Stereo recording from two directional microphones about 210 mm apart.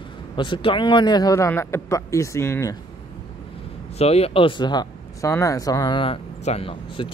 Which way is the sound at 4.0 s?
30° left (ahead or behind).